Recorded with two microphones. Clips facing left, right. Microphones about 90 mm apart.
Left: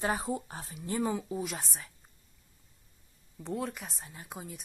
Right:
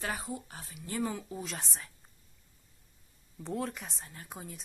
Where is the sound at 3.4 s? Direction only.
Centre (ahead or behind).